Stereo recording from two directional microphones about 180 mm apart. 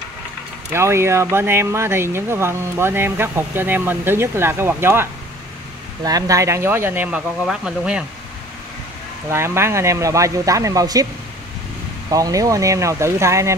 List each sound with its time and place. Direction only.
0.7 s speech: 15° right (ahead or behind)
6.0 s speech: 20° right (ahead or behind)
9.3 s speech: 15° right (ahead or behind)
12.1 s speech: 20° right (ahead or behind)